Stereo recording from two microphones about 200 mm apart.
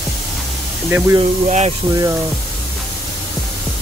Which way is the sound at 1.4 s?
35° right (ahead or behind).